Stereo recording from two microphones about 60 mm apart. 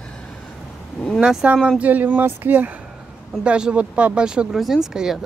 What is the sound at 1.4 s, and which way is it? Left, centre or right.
Speech, right.